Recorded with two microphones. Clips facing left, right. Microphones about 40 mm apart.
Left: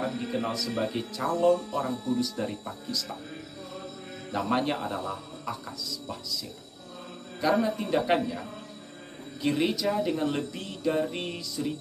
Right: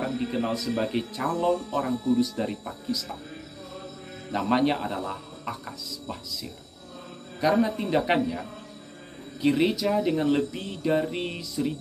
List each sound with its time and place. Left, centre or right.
0.0 s a sound: centre
0.7 s speech: centre
1.4 s speech: centre
4.3 s a man's voice: centre
7.3 s speech: centre